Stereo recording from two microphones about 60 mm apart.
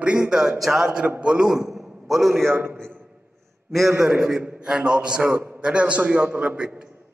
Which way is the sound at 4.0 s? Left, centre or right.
Centre.